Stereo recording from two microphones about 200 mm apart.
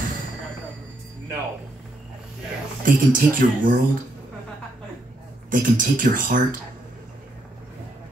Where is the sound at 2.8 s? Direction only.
45° right (ahead or behind).